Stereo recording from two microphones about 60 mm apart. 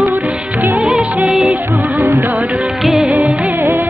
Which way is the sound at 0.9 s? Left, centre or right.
Centre.